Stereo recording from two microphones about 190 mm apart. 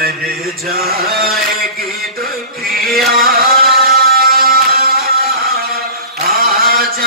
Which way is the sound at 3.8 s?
55° right (ahead or behind).